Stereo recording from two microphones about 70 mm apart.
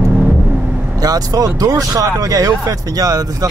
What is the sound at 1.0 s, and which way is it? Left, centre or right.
Speech, right.